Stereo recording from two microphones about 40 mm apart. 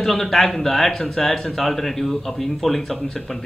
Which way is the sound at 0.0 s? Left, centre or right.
Centre.